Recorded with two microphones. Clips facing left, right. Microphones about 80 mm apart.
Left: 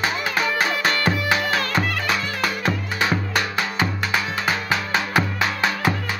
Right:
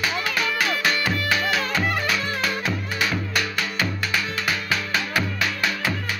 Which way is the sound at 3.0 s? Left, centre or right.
Left.